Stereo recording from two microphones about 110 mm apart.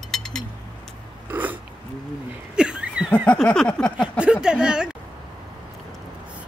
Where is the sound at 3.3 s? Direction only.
10° left (ahead or behind).